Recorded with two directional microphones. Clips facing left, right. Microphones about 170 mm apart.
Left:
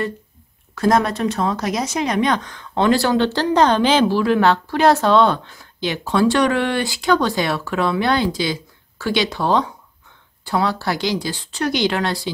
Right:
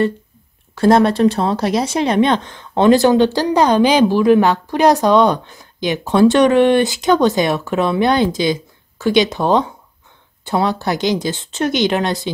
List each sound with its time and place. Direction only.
0.7 s speech: 30° right (ahead or behind)